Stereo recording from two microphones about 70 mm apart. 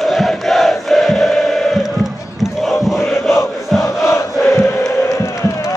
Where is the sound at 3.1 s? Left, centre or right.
Centre.